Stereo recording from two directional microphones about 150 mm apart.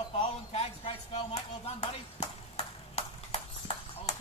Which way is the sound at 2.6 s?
45° left (ahead or behind).